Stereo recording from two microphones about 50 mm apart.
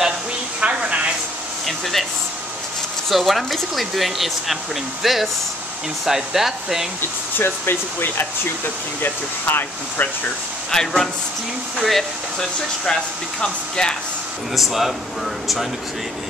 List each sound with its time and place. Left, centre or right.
0.6 s a sound: right
1.7 s speech: centre
3.1 s speech: centre
7.0 s speech: left
10.7 s speech: centre
14.5 s speech: centre